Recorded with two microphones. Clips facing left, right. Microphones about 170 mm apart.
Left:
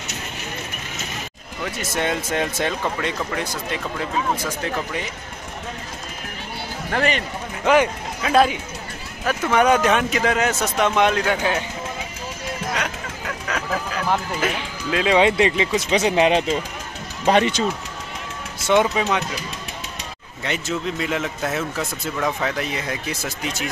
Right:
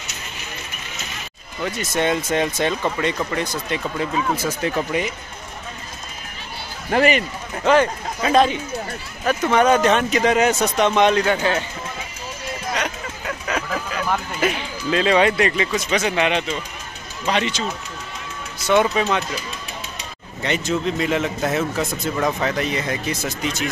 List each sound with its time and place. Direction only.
1.6 s speech: centre (ahead or behind)
4.9 s speech: 10° right (ahead or behind)
6.9 s speech: 10° right (ahead or behind)
7.6 s speech: 15° left (ahead or behind)
14.4 s speech: 5° left (ahead or behind)
15.1 s speech: 20° left (ahead or behind)
16.0 s speech: 35° left (ahead or behind)
17.3 s speech: 50° left (ahead or behind)
18.6 s speech: 20° left (ahead or behind)
20.4 s speech: 5° left (ahead or behind)